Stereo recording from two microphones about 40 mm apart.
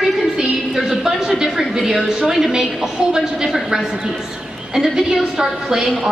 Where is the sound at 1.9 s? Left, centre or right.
Centre.